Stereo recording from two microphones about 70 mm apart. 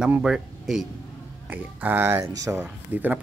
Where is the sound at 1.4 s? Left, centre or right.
Right.